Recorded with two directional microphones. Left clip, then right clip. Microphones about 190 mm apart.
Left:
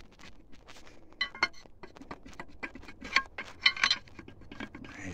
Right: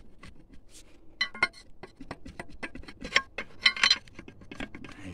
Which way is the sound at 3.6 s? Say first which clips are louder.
Right 3 dB; 80° right.